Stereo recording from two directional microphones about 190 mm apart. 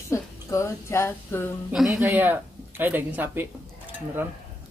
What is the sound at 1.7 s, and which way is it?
Speech, 5° right (ahead or behind).